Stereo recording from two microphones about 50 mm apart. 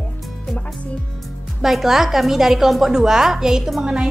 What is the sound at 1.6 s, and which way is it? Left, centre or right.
A woman's voice, centre.